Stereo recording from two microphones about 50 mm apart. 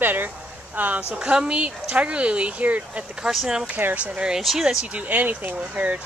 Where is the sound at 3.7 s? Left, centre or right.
Right.